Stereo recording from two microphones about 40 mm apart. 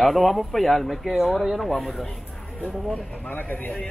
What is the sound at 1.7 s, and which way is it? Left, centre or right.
Speech, centre.